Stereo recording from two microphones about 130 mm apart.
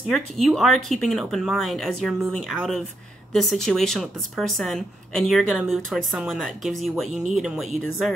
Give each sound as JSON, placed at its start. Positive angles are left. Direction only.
{"t": 0.1, "sound": "speech", "side_deg": 0}